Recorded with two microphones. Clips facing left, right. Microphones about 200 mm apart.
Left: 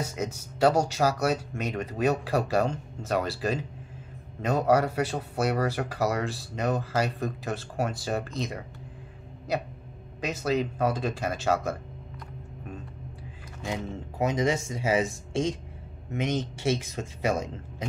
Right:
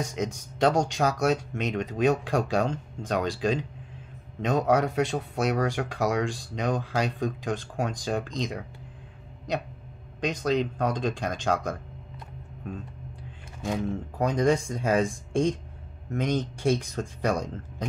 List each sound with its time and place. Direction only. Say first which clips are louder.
0.0 s speech: right 2 dB; 5° left (ahead or behind)
10.2 s speech: right 2 dB; 5° left (ahead or behind)
13.7 s speech: right 4 dB; 5° left (ahead or behind)